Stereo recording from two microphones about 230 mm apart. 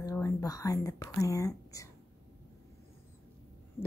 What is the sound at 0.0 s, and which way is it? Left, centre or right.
Speech, centre.